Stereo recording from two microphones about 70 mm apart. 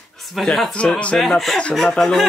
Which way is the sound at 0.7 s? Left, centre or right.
Centre.